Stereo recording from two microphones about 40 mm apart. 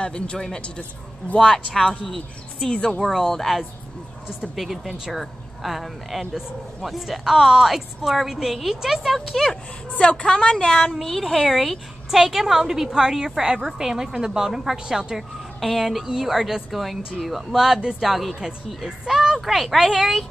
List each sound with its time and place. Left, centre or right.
0.0 s a woman's voice: left
1.4 s speech: centre
4.6 s speech: centre
9.8 s a woman's voice: left
11.0 s a woman's voice: centre
15.6 s a woman's voice: centre